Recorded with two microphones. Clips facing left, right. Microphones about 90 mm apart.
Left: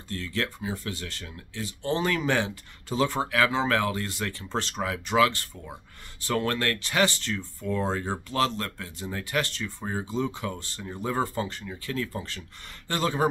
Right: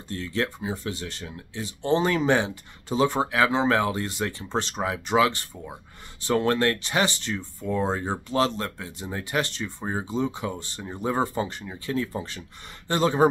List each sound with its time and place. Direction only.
0.1 s speech: 20° right (ahead or behind)